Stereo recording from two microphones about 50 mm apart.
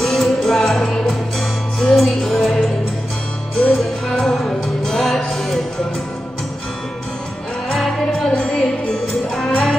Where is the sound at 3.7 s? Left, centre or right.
Centre.